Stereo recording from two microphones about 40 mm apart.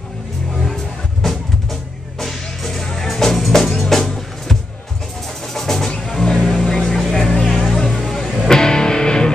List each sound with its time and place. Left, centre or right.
1.2 s music: centre
5.9 s music: left
6.1 s vehicle: centre
7.3 s music: left
8.0 s music: centre